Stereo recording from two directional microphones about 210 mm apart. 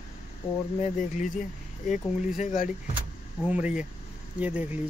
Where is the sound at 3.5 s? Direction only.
5° right (ahead or behind).